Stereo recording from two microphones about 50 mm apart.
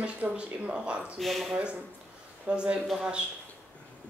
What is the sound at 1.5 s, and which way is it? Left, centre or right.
Speech, right.